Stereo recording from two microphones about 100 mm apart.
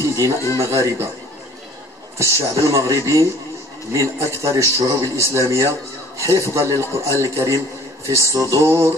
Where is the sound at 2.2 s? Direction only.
30° right (ahead or behind).